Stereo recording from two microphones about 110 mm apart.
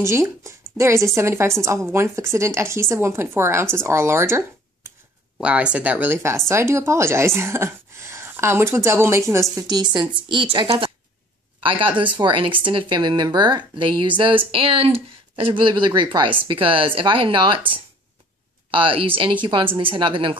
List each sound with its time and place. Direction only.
0.0 s speech: 25° right (ahead or behind)
5.4 s speech: 10° right (ahead or behind); by 10.9 s 50° right (ahead or behind)
12.2 s speech: 50° right (ahead or behind)